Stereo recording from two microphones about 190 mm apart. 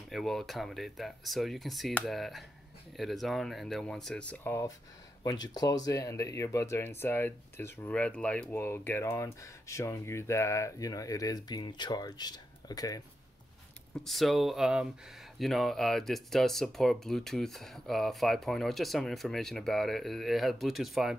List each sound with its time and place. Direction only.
0.1 s speech: centre (ahead or behind); by 13.0 s 20° left (ahead or behind)
14.0 s speech: centre (ahead or behind)